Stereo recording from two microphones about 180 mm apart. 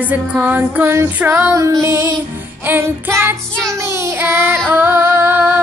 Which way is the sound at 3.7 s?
15° right (ahead or behind).